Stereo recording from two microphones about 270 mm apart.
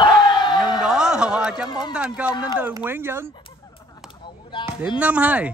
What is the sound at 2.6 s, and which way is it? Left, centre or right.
Speech, centre.